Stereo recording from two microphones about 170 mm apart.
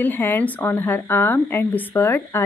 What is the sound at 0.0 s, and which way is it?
Speech, 10° left (ahead or behind).